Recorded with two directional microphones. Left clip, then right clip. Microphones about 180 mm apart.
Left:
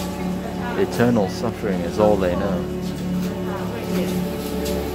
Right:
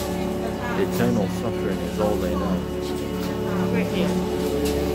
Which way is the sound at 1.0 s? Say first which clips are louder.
Left 7 dB; 25° left (ahead or behind).